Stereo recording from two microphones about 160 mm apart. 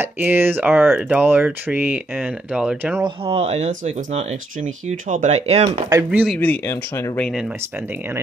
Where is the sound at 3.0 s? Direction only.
30° right (ahead or behind).